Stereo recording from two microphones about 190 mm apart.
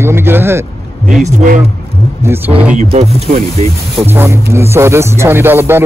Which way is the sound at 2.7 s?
35° right (ahead or behind).